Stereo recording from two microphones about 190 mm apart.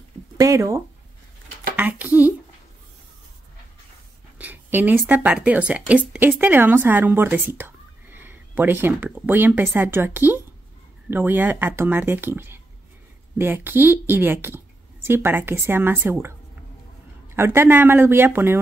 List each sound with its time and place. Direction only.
0.4 s speech: 15° right (ahead or behind)
4.4 s speech: 10° right (ahead or behind)
17.4 s speech: 10° right (ahead or behind)